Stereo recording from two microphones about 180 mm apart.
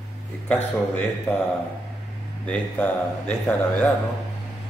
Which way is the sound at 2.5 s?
5° left (ahead or behind).